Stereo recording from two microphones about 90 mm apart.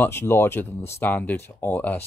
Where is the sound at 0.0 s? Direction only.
25° left (ahead or behind).